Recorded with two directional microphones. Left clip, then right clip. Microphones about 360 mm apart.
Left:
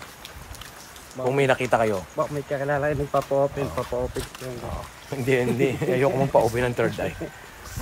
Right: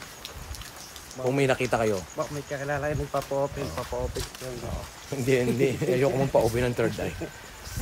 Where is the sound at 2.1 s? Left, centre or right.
Centre.